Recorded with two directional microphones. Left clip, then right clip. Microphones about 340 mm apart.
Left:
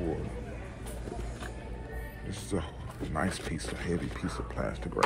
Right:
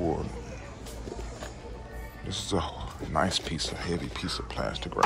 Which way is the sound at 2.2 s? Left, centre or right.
Right.